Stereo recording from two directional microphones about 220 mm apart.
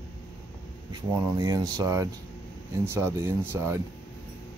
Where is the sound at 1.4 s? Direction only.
15° right (ahead or behind).